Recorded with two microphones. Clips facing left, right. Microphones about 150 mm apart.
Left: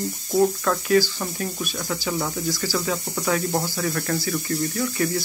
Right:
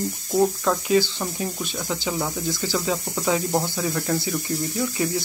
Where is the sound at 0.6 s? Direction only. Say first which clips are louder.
Even; 15° right (ahead or behind).